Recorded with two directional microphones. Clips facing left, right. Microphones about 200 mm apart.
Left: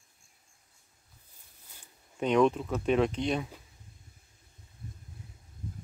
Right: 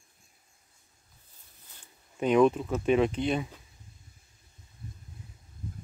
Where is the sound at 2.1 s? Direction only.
5° right (ahead or behind).